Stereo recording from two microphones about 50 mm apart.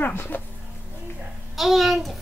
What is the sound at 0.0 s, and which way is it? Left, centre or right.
Speech, left.